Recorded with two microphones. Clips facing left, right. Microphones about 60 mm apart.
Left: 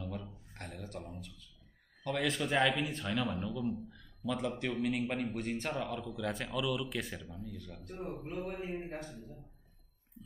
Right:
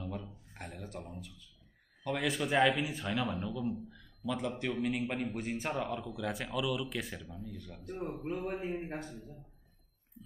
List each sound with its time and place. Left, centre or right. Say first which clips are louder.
0.0 s a sound: right 1 dB; centre
2.0 s a man's voice: even; centre
7.2 s a man's voice: even; right
7.8 s a man's voice: right 4 dB; centre
8.6 s a man's voice: right 2 dB; right